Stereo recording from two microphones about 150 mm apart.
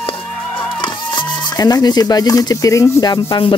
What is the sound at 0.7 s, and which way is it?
Speech, 30° left (ahead or behind).